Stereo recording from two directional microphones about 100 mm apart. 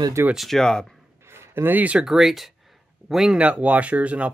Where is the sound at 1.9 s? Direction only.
5° right (ahead or behind).